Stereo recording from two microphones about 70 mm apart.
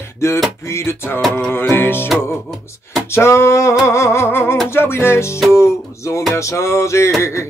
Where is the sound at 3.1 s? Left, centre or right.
Left.